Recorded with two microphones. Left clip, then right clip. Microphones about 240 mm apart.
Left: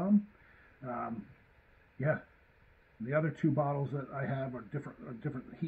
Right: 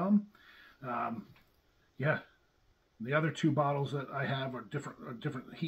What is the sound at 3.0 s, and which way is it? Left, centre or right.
Speech, right.